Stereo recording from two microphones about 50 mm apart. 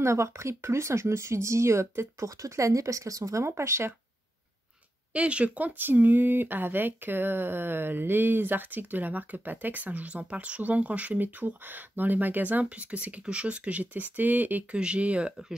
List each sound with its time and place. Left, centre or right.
0.0 s speech: right
5.1 s speech: right
5.9 s speech: right
14.7 s speech: right